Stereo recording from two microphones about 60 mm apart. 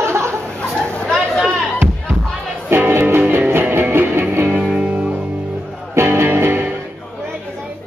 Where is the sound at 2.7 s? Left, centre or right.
Right.